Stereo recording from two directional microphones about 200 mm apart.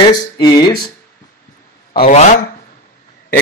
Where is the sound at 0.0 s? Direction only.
20° left (ahead or behind).